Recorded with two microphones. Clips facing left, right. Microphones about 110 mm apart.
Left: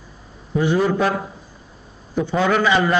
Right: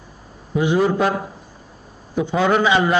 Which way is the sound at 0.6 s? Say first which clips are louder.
Right 1 dB; 15° right (ahead or behind).